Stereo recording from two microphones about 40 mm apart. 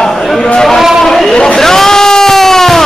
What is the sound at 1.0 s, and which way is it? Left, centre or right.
Speech, centre.